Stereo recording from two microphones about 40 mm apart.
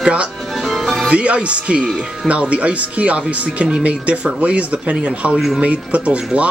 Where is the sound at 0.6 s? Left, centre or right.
Centre.